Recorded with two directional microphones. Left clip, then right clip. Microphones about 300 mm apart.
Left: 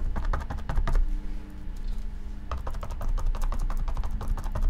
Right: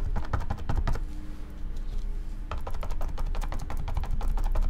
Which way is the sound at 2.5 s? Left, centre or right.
Centre.